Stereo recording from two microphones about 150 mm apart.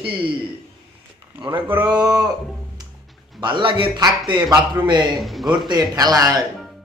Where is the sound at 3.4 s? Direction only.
35° right (ahead or behind).